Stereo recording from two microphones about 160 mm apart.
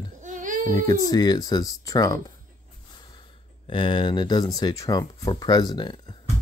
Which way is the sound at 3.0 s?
30° left (ahead or behind).